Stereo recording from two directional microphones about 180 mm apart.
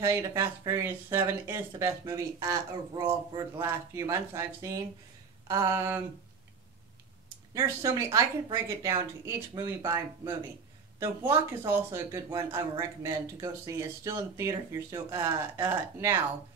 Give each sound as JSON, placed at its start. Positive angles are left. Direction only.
{"t": 0.0, "sound": "speech", "side_deg": -15}
{"t": 5.5, "sound": "a sound", "side_deg": -20}
{"t": 7.5, "sound": "speech", "side_deg": -15}